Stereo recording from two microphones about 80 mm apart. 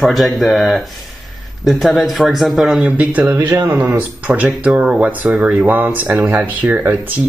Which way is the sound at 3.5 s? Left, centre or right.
Right.